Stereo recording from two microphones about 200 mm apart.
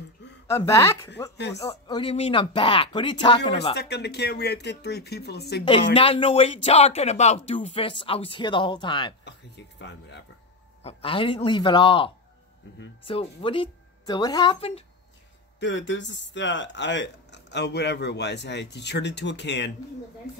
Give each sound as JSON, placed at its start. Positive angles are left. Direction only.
{"t": 0.5, "sound": "speech", "side_deg": 15}
{"t": 3.7, "sound": "speech", "side_deg": 55}
{"t": 5.9, "sound": "speech", "side_deg": 25}
{"t": 9.2, "sound": "a sound", "side_deg": 60}
{"t": 10.8, "sound": "speech", "side_deg": 30}
{"t": 15.6, "sound": "speech", "side_deg": 65}